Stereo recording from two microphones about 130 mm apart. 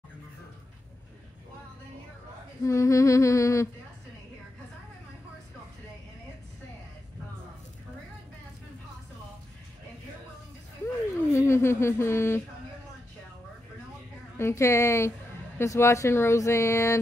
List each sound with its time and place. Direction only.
2.6 s speech: 25° left (ahead or behind)
11.3 s speech: 20° left (ahead or behind)
14.3 s speech: 20° left (ahead or behind)